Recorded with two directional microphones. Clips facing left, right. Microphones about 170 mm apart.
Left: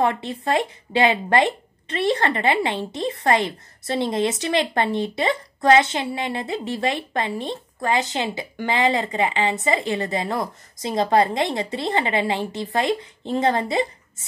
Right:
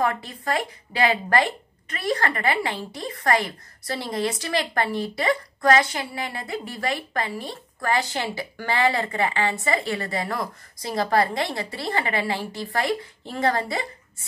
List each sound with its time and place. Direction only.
0.0 s speech: 25° left (ahead or behind)